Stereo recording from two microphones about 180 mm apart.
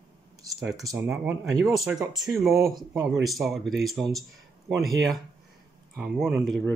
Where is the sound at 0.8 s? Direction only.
Centre (ahead or behind).